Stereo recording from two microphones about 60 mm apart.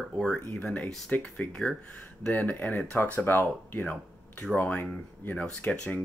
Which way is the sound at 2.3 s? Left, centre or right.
Left.